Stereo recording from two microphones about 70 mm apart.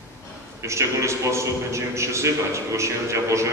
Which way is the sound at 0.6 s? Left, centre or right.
Right.